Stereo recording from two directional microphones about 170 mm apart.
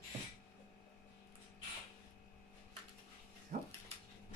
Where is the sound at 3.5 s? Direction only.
50° right (ahead or behind).